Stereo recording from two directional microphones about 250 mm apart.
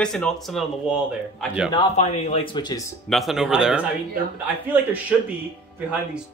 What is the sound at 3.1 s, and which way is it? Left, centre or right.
Speech, centre.